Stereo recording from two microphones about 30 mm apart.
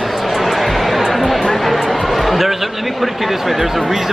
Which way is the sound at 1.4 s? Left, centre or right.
Centre.